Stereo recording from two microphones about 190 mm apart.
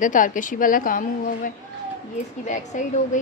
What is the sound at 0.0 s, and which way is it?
A woman's voice, 45° left (ahead or behind).